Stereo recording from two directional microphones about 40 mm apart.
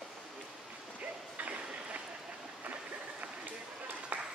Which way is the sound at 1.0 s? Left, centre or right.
Right.